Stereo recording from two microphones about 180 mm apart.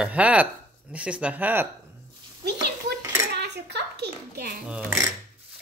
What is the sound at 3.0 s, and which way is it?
Dishes, 15° right (ahead or behind).